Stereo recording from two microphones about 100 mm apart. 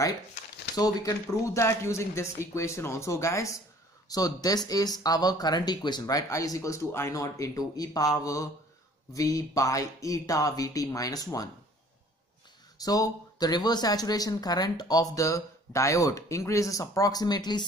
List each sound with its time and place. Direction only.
0.7 s speech: 40° left (ahead or behind)
12.7 s speech: 40° left (ahead or behind)